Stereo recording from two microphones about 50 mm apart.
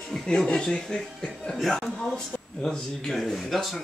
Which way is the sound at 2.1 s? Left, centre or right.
Centre.